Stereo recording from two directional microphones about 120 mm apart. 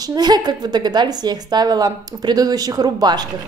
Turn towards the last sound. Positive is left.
turn(degrees=-35)  # may be behind; listen again after turning